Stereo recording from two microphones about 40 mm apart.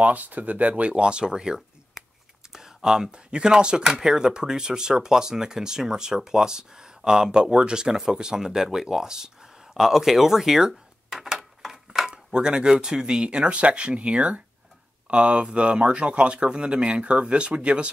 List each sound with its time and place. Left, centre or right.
0.0 s speech: right; by 12.1 s centre
12.1 s speech: right